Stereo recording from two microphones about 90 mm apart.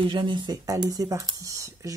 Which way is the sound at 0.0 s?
65° right (ahead or behind).